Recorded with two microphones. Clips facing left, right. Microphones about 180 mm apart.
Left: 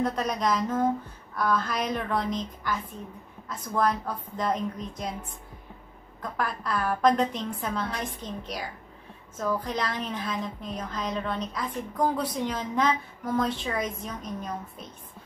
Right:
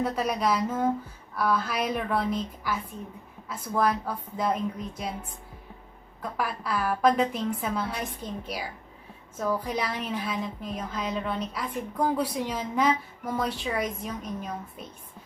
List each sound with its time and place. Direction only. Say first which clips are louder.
0.0 s a woman's voice: even; 5° right (ahead or behind)
6.3 s a woman's voice: even; 10° right (ahead or behind)